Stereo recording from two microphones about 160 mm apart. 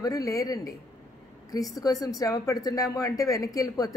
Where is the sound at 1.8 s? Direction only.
20° left (ahead or behind).